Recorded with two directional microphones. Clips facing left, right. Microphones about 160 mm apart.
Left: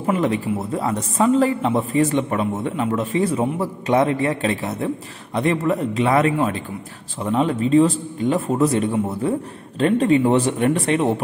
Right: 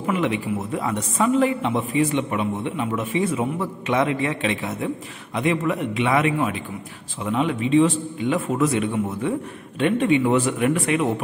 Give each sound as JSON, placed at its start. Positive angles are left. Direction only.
{"t": 0.0, "sound": "a man's voice", "side_deg": 35}